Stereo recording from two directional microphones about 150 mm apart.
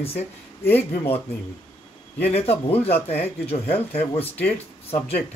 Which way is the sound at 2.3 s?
40° left (ahead or behind).